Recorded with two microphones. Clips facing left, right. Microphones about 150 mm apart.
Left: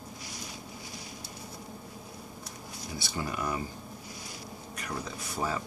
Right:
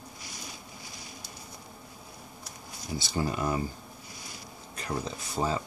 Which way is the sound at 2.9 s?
25° right (ahead or behind).